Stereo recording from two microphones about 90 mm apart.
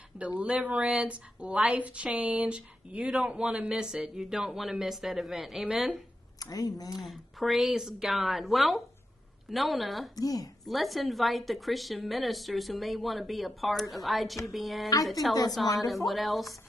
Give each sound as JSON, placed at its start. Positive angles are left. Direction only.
{"t": 0.2, "sound": "speech", "side_deg": -15}
{"t": 6.4, "sound": "speech", "side_deg": 45}
{"t": 7.1, "sound": "a woman's voice", "side_deg": 0}
{"t": 10.1, "sound": "speech", "side_deg": 45}
{"t": 10.6, "sound": "a woman's voice", "side_deg": 0}